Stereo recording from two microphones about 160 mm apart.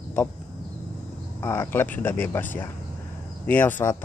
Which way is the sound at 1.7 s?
10° left (ahead or behind).